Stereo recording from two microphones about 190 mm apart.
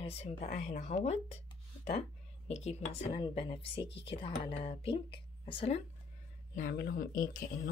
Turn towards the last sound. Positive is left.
turn(degrees=50)  # may be behind; listen again after turning